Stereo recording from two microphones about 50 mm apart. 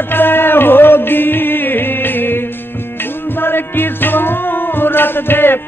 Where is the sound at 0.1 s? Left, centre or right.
Left.